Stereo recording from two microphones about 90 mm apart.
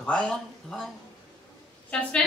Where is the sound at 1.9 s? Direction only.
15° left (ahead or behind).